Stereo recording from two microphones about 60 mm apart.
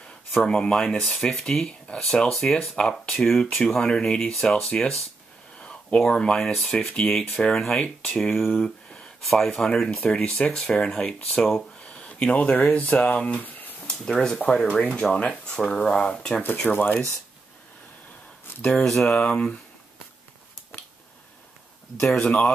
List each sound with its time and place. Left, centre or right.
0.4 s speech: centre
5.6 s a sound: centre
5.9 s speech: centre
11.1 s speech: left
13.4 s a sound: left
13.8 s speech: centre
16.4 s speech: left
18.7 s speech: centre
22.2 s speech: centre